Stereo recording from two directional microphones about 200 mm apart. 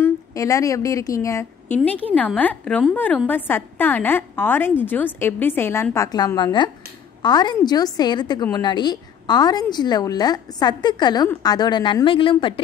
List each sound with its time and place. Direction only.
0.0 s a woman's voice: 15° left (ahead or behind)